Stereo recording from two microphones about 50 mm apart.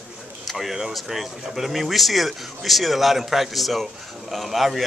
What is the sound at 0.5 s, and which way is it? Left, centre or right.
Speech, centre.